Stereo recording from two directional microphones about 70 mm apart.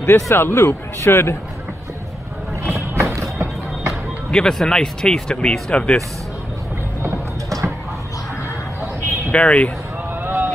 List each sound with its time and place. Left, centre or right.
0.1 s speech: left
2.7 s vehicle: right
3.2 s a sound: right
4.3 s speech: centre
7.4 s a sound: right
9.3 s speech: centre
10.2 s vehicle: right